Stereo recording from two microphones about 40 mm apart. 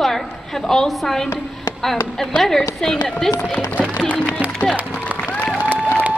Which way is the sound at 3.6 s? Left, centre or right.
Left.